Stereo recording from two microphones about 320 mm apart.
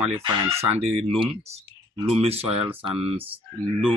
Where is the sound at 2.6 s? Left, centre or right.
Centre.